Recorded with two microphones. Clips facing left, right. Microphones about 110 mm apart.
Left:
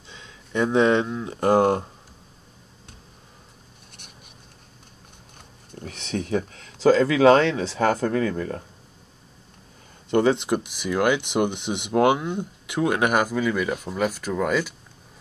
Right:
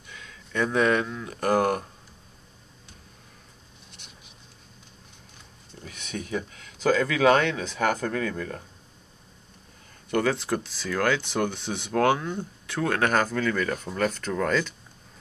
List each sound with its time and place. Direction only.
0.1 s speech: 25° left (ahead or behind)
5.7 s a sound: 55° left (ahead or behind)
5.9 s speech: 30° left (ahead or behind)
10.0 s speech: 20° left (ahead or behind)